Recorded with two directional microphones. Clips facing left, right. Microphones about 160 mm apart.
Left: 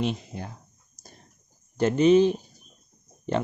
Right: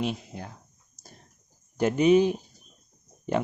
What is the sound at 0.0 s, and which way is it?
Speech, 5° right (ahead or behind).